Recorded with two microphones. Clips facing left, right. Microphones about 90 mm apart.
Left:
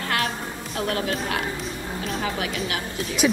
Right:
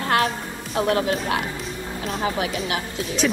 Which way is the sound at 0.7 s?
25° right (ahead or behind).